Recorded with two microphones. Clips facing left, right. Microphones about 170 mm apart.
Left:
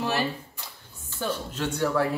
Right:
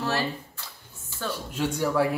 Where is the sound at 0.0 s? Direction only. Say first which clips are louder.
Left 1 dB; 15° left (ahead or behind).